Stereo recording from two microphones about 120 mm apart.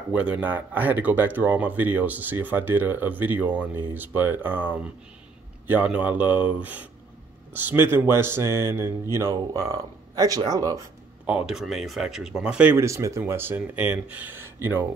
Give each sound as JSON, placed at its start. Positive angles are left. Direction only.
{"t": 0.1, "sound": "speech", "side_deg": -10}
{"t": 11.2, "sound": "speech", "side_deg": -5}
{"t": 12.7, "sound": "speech", "side_deg": -25}